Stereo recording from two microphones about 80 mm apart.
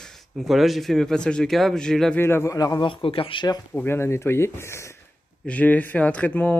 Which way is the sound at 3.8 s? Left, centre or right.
Left.